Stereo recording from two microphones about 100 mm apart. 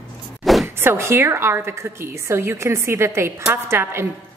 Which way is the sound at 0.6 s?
25° right (ahead or behind).